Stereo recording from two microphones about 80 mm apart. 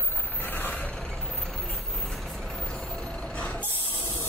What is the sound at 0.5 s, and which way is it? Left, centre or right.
Vehicle, left.